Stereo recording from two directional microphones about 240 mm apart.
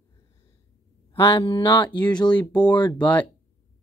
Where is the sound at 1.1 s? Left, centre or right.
Centre.